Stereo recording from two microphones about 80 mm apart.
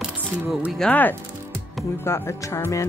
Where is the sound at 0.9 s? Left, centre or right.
Left.